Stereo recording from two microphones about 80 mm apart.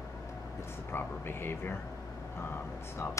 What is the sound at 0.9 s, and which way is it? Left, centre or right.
Speech, left.